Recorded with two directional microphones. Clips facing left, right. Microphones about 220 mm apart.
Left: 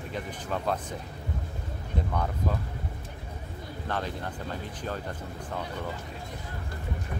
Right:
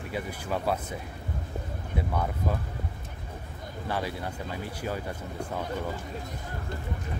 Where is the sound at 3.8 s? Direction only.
10° right (ahead or behind).